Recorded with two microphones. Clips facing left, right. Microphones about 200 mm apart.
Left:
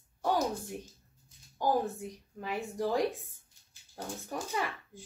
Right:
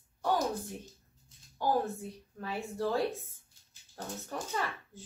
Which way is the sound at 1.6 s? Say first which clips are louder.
Left 1 dB; 15° left (ahead or behind).